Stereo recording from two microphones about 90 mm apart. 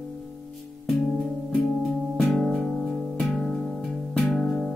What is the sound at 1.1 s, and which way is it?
Music, 5° right (ahead or behind).